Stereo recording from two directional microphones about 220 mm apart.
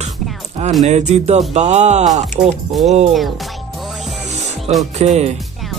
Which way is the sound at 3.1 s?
Centre (ahead or behind).